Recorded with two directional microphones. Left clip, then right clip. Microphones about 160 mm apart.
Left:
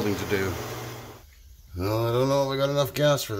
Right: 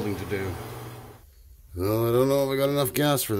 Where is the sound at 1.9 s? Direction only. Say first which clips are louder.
Right 1 dB; 45° right (ahead or behind); by 3.2 s 60° right (ahead or behind).